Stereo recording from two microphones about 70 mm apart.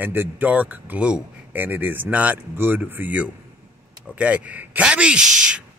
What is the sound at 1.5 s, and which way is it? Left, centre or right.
A man's voice, right.